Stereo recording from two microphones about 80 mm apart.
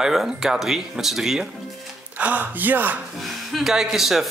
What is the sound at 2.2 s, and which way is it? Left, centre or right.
Speech, centre.